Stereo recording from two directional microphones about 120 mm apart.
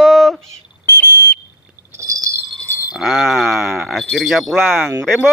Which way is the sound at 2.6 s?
20° left (ahead or behind).